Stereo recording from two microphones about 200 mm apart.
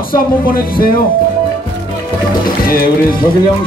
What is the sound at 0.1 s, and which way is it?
Music, 45° left (ahead or behind).